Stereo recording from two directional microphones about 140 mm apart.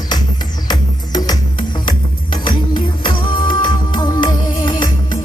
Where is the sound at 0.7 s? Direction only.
30° left (ahead or behind).